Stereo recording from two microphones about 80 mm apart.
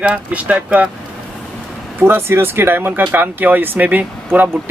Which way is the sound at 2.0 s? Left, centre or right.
Right.